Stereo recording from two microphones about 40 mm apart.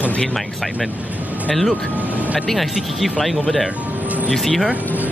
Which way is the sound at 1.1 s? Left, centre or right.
Right.